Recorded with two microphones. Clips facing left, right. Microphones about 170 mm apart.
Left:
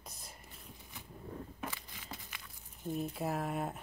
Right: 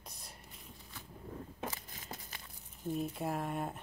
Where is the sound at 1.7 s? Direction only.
40° right (ahead or behind).